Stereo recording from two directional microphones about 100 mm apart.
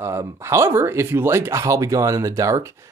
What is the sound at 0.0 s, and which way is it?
Speech, 25° right (ahead or behind).